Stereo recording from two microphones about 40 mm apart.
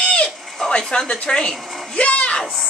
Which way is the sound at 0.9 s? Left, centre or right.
Left.